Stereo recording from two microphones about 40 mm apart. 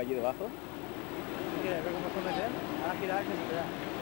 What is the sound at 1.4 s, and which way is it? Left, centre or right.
Speech, left.